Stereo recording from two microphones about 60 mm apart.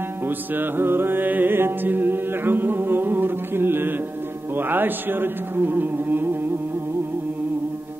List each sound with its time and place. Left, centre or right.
0.6 s mantra: right
4.6 s carnatic music: right